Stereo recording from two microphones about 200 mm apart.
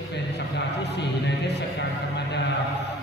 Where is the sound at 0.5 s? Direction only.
60° left (ahead or behind).